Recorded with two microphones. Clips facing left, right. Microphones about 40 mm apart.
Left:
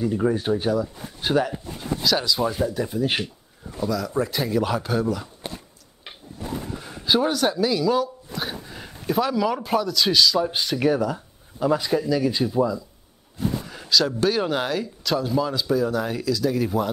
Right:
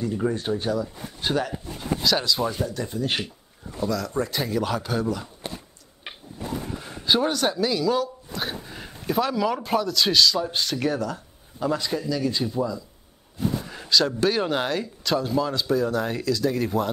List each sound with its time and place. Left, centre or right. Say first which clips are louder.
0.0 s speech: left 3 dB; centre
6.0 s a sound: right 3 dB; right
6.8 s speech: left 1 dB; centre
13.7 s speech: left 1 dB; centre